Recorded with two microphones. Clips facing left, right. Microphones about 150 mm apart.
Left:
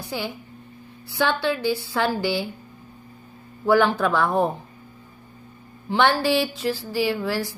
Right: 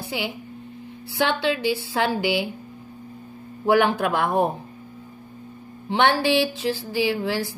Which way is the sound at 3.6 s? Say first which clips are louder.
Even; 20° right (ahead or behind).